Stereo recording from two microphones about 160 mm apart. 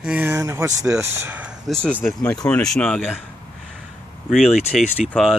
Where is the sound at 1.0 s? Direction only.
15° right (ahead or behind).